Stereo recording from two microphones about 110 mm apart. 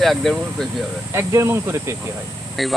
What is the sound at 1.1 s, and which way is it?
Speech, 25° right (ahead or behind).